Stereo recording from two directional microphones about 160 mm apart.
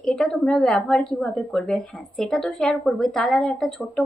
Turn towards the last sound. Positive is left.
turn(degrees=5)  # may be behind; listen again after turning